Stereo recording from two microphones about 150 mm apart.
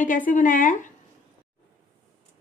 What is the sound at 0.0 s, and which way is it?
Speech, 65° left (ahead or behind).